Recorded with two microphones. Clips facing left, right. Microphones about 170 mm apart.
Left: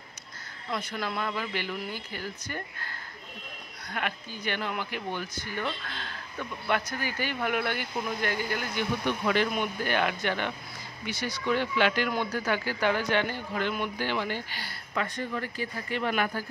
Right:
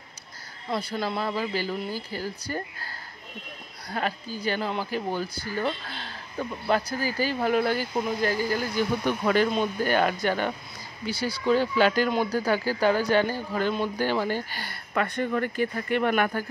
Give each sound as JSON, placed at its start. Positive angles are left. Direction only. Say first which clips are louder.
{"t": 0.7, "sound": "speech", "louder": "right 4 dB", "side_deg": -30}
{"t": 3.9, "sound": "speech", "louder": "right 5 dB", "side_deg": -35}